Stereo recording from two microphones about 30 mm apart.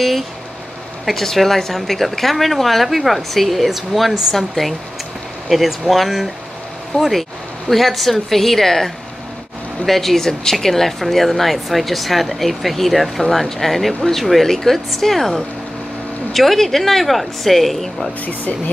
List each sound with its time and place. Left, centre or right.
1.0 s speech: centre
5.5 s speech: centre
10.2 s speech: centre